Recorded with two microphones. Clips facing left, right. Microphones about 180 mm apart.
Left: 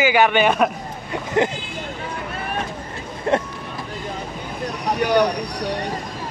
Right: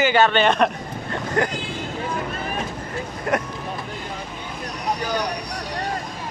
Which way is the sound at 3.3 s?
30° left (ahead or behind).